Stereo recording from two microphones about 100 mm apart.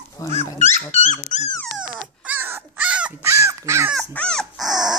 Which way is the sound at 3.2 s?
30° right (ahead or behind).